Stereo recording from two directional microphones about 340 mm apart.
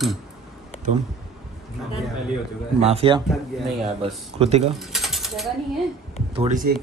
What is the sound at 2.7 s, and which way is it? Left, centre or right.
Speech, centre.